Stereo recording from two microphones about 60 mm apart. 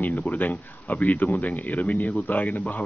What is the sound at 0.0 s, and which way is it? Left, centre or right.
Speech, left.